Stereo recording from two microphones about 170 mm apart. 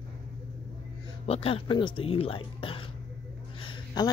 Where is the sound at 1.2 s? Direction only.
35° left (ahead or behind).